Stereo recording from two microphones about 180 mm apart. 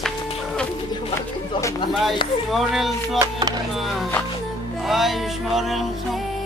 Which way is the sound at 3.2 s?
20° right (ahead or behind).